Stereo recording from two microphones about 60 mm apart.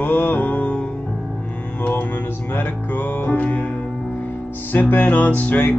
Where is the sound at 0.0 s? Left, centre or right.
Left.